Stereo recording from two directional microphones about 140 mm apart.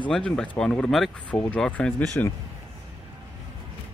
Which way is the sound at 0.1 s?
5° left (ahead or behind).